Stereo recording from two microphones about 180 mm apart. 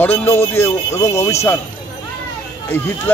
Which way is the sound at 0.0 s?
10° left (ahead or behind).